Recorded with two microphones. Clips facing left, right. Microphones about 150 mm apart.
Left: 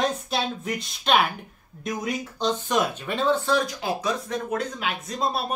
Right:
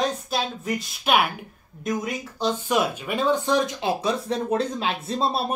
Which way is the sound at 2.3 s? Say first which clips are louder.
Right 2 dB; 10° right (ahead or behind).